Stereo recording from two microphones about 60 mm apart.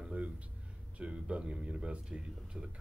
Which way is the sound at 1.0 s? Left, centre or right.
Centre.